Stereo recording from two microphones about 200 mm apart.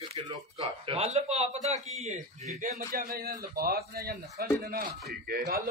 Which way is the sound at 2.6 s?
45° right (ahead or behind).